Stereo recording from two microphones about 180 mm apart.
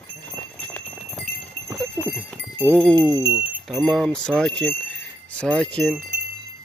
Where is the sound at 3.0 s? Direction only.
20° right (ahead or behind).